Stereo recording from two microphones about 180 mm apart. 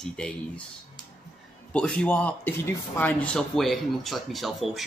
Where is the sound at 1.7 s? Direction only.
5° left (ahead or behind).